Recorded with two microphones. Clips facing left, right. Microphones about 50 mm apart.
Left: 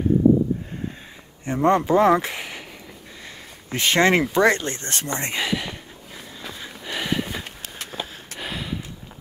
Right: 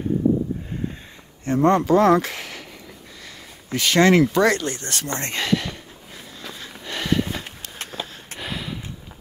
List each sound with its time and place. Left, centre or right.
1.4 s speech: centre
3.7 s speech: left
5.1 s speech: centre
6.4 s a sound: centre